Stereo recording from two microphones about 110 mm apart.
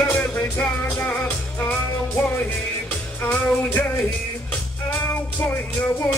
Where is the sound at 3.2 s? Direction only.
15° left (ahead or behind).